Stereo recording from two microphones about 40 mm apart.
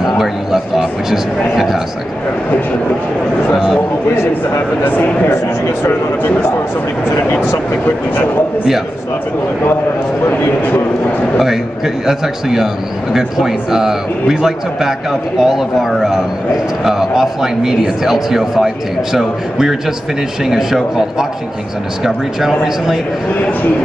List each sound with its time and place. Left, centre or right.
0.2 s a sound: centre
4.8 s a man's voice: left
10.6 s speech: left
11.3 s speech: centre